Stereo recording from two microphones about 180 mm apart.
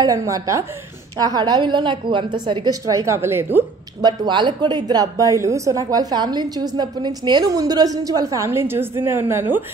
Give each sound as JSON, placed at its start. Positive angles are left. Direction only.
{"t": 0.0, "sound": "a woman's voice", "side_deg": -20}
{"t": 4.0, "sound": "a woman's voice", "side_deg": -25}